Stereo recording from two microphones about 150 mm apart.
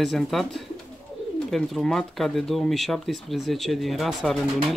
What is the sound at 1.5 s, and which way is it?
Speech, centre (ahead or behind).